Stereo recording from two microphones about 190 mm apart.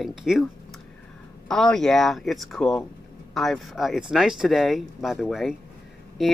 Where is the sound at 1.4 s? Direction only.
Centre (ahead or behind).